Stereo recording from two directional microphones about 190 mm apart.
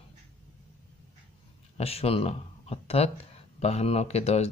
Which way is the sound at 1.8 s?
30° left (ahead or behind).